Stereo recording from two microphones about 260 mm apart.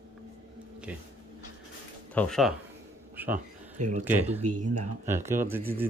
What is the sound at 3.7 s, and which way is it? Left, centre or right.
Speech, right.